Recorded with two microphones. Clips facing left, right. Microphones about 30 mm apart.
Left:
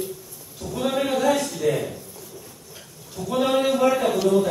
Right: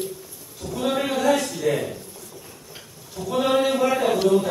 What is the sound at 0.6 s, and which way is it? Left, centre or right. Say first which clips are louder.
Speech: even; right.